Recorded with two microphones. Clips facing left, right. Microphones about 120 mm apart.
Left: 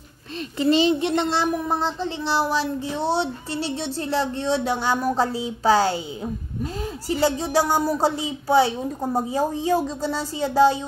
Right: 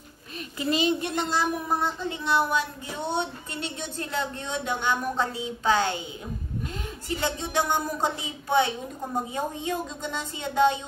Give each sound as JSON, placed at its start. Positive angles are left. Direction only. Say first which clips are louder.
{"t": 0.6, "sound": "child singing", "louder": "left 6 dB", "side_deg": 30}
{"t": 7.1, "sound": "child singing", "louder": "left 8 dB", "side_deg": 35}